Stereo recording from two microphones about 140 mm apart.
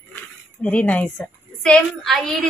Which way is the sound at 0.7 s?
10° left (ahead or behind).